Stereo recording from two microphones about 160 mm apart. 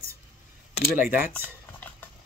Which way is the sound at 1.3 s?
10° left (ahead or behind).